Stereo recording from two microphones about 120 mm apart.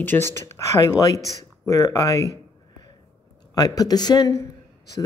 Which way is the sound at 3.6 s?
30° left (ahead or behind).